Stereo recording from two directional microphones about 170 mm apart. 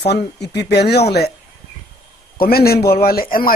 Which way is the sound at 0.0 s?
75° left (ahead or behind).